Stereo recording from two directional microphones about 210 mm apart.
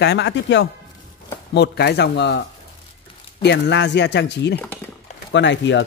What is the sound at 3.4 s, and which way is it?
Speech, 55° left (ahead or behind).